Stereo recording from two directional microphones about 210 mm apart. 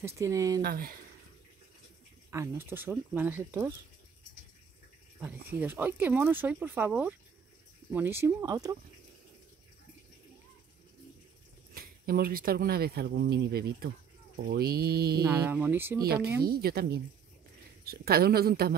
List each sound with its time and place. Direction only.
0.0 s speech: 15° right (ahead or behind)
0.6 s speech: 45° right (ahead or behind)
2.3 s speech: 10° right (ahead or behind)
5.5 s speech: 10° right (ahead or behind)
11.7 s speech: 45° right (ahead or behind)
15.2 s speech: 10° right (ahead or behind)
16.0 s speech: 45° right (ahead or behind)